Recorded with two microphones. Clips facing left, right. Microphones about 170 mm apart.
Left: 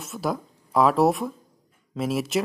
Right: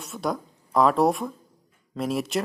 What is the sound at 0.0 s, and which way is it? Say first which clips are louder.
Speech: left 1 dB; centre (ahead or behind).